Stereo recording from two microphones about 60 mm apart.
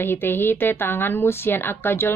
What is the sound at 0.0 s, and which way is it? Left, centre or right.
Speech, left.